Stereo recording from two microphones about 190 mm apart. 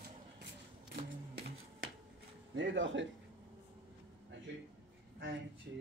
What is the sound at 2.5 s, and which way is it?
Speech, 80° right.